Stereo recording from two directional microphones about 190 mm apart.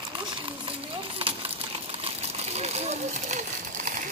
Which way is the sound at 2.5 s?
35° right (ahead or behind).